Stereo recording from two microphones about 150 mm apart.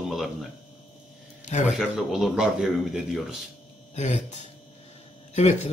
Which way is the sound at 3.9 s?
50° left (ahead or behind).